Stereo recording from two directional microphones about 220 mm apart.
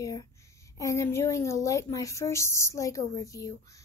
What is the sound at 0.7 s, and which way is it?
A woman's voice, 15° left (ahead or behind).